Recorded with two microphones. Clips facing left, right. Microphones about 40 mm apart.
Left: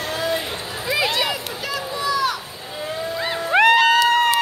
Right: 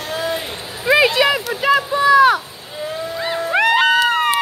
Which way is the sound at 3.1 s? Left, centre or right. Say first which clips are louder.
Right 1 dB; centre.